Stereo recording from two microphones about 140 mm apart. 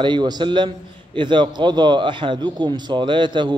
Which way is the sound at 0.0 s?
30° right (ahead or behind).